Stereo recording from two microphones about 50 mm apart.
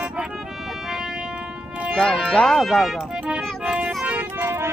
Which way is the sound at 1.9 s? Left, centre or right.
Centre.